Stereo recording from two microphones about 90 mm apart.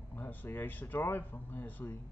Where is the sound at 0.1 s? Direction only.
20° left (ahead or behind).